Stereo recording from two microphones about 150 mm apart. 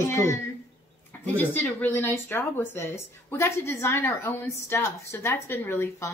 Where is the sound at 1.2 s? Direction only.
10° left (ahead or behind).